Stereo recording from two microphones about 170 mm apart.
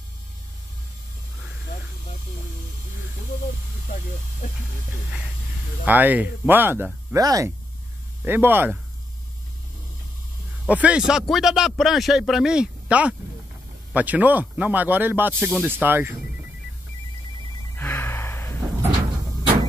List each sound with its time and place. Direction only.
5.9 s speech: 10° right (ahead or behind)
10.7 s speech: 10° right (ahead or behind)
17.7 s gasp: 10° left (ahead or behind)